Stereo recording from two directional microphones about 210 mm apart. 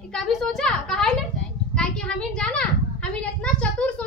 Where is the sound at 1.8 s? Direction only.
5° left (ahead or behind).